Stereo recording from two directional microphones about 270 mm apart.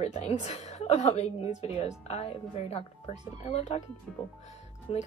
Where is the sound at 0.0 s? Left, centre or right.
Left.